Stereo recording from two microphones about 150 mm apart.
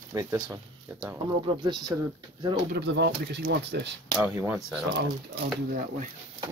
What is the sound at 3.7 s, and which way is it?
Speech, 90° right.